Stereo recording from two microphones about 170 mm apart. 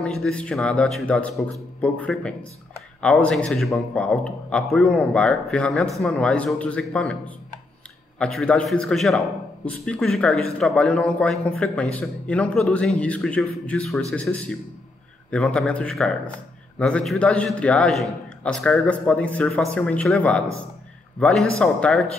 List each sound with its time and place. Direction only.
0.0 s a man's voice: 5° left (ahead or behind)
8.2 s a man's voice: 5° left (ahead or behind)